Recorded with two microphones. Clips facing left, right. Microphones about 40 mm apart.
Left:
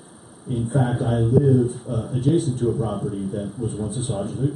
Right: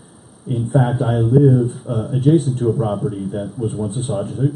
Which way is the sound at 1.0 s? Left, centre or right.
Centre.